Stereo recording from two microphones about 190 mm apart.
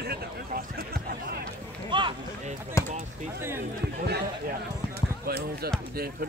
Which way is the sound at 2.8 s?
15° left (ahead or behind).